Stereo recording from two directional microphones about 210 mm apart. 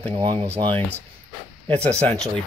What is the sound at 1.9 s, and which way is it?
Speech, 30° right (ahead or behind).